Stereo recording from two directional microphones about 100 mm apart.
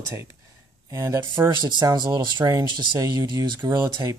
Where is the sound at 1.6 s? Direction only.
45° right (ahead or behind).